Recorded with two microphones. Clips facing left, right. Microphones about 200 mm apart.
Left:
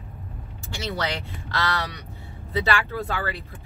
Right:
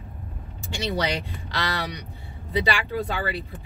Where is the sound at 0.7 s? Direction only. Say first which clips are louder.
Right 3 dB; 15° right (ahead or behind).